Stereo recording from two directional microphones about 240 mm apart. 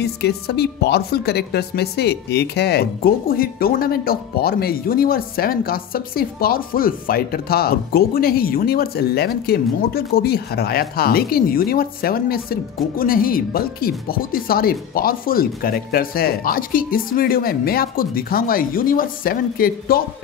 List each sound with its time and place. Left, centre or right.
0.0 s a woman's voice: left